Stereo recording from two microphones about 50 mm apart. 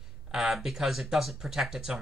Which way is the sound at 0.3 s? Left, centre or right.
Centre.